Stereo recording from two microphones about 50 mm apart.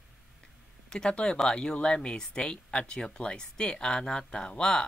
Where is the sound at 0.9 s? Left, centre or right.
Centre.